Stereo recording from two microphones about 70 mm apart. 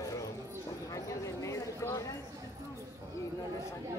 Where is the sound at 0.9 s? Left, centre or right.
Left.